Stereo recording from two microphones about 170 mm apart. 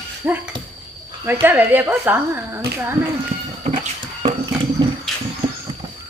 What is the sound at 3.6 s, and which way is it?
Horse, 40° right (ahead or behind).